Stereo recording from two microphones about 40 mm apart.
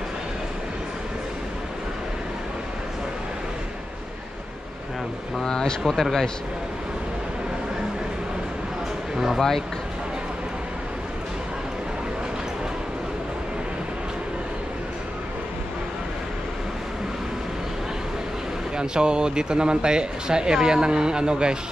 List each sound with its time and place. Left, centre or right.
5.4 s speech: centre
9.1 s speech: centre
18.8 s speech: right